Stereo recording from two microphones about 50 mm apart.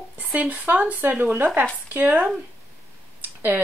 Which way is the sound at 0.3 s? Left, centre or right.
Right.